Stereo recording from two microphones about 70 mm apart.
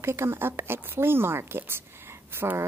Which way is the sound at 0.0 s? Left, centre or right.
Right.